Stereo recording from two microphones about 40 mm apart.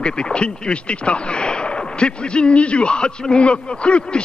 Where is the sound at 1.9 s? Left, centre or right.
Left.